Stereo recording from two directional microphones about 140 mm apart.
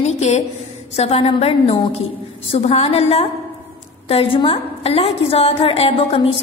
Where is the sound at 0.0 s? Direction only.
50° left (ahead or behind).